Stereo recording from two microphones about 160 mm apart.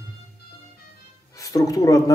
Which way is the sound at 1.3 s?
20° left (ahead or behind).